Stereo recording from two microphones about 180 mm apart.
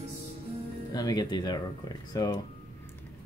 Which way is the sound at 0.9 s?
20° left (ahead or behind).